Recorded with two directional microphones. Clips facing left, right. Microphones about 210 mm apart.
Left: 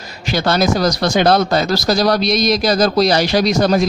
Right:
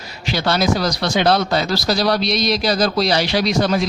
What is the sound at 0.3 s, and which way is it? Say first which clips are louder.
Speech: left 3 dB; 45° left (ahead or behind).